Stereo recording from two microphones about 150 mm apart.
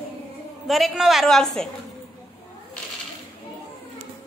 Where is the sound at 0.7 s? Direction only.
Centre (ahead or behind).